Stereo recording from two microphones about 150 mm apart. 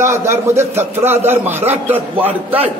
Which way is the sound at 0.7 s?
45° right (ahead or behind).